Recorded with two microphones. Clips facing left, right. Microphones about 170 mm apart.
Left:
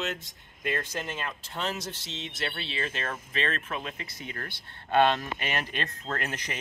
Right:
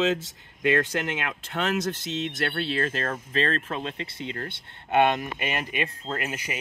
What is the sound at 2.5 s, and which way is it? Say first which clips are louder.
Speech: right 7 dB; 50° right (ahead or behind).